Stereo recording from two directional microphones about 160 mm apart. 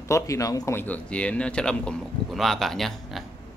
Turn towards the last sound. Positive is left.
turn(degrees=0)  # may be behind; listen again after turning